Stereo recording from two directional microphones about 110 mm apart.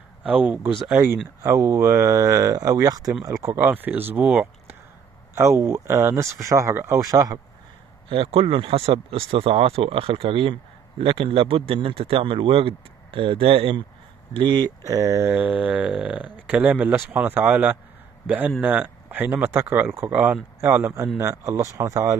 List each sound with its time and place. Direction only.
0.2 s speech: 10° right (ahead or behind)
0.8 s speech: 20° right (ahead or behind)
5.3 s speech: 25° right (ahead or behind)
8.1 s speech: 60° right (ahead or behind)
14.3 s speech: 40° right (ahead or behind)
14.9 s speech: 30° right (ahead or behind)
15.3 s speech: 10° right (ahead or behind); by 22.1 s 25° right (ahead or behind)